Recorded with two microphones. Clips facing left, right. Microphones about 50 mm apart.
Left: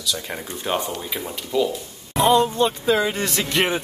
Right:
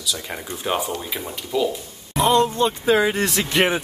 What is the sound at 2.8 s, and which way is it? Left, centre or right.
Speech, centre.